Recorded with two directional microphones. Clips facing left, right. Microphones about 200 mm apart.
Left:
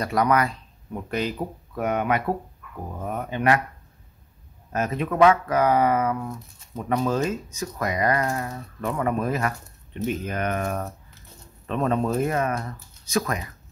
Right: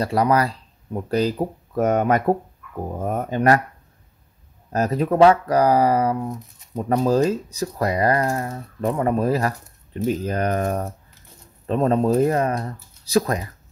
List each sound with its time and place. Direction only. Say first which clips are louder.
0.0 s speech: right 3 dB; 30° right (ahead or behind)
4.7 s speech: right 4 dB; 35° right (ahead or behind)